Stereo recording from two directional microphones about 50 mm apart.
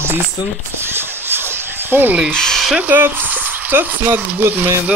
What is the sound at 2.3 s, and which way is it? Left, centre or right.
Speech, centre.